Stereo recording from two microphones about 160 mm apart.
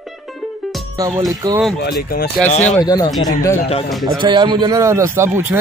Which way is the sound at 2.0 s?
70° left (ahead or behind).